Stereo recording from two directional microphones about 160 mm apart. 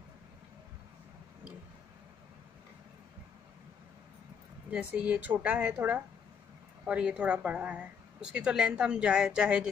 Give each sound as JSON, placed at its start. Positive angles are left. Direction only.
{"t": 4.6, "sound": "a woman's voice", "side_deg": -10}